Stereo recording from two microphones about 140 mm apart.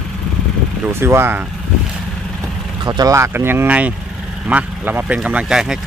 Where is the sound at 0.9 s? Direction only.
15° right (ahead or behind).